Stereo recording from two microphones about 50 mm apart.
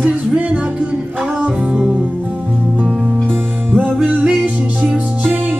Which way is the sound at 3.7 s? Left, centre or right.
Right.